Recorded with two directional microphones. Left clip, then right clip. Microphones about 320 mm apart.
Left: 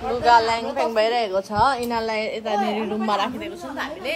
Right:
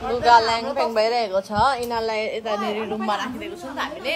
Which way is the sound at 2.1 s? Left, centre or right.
Centre.